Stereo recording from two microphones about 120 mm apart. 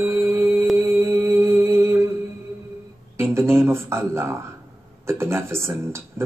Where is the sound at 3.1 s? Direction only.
20° right (ahead or behind).